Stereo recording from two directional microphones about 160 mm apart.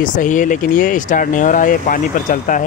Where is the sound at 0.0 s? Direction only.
55° left (ahead or behind).